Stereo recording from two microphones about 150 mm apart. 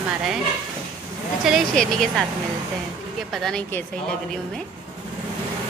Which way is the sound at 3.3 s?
5° left (ahead or behind).